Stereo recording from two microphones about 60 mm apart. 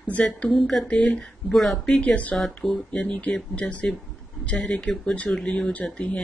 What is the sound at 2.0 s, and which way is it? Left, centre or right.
Speech, left.